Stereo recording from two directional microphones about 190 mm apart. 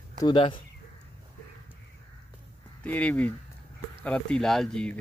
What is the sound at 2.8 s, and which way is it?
Speech, 10° left (ahead or behind).